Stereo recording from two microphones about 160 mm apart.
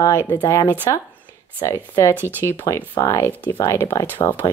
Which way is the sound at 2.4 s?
20° left (ahead or behind).